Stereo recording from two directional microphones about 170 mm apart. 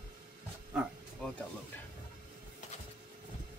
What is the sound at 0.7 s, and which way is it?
Roaring cats, 5° right (ahead or behind).